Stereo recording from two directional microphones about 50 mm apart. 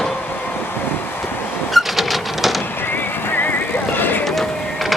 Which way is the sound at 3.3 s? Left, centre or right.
Left.